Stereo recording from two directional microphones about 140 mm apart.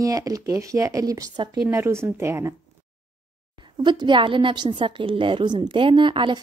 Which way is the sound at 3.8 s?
35° right (ahead or behind).